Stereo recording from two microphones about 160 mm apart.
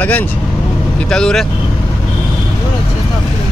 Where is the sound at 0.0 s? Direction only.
10° left (ahead or behind).